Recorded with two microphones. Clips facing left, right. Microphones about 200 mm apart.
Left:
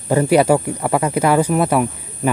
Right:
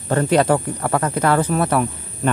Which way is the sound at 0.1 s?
10° left (ahead or behind).